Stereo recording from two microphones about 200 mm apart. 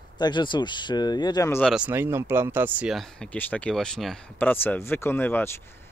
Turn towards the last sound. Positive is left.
turn(degrees=10)  # may be behind; listen again after turning